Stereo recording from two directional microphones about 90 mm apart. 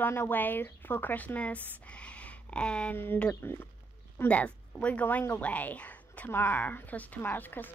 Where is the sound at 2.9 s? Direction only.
20° left (ahead or behind).